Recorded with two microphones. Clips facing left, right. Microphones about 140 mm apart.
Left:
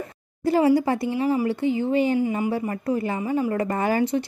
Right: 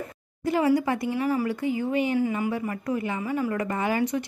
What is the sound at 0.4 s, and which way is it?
A woman's voice, 35° left (ahead or behind).